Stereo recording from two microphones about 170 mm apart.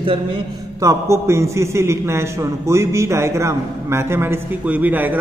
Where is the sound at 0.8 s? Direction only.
15° right (ahead or behind).